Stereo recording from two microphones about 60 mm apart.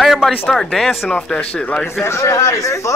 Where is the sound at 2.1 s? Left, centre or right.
Left.